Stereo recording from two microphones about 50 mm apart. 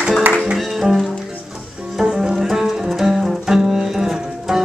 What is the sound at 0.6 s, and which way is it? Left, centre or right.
Music, centre.